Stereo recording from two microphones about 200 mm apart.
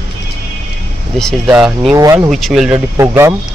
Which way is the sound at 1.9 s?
15° right (ahead or behind).